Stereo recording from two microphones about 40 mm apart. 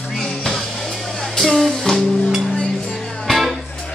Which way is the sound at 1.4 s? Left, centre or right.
Centre.